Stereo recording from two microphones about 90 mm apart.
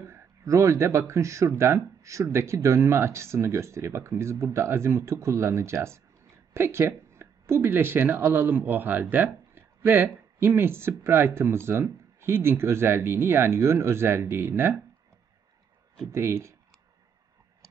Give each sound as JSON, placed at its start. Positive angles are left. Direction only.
{"t": 0.1, "sound": "speech", "side_deg": -35}
{"t": 16.1, "sound": "speech", "side_deg": -30}